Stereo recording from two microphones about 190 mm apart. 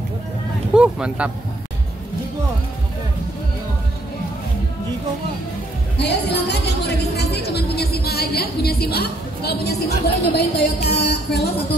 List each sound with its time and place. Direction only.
0.7 s speech: 5° right (ahead or behind)
5.9 s music: 60° left (ahead or behind)
7.3 s a woman's voice: 60° left (ahead or behind)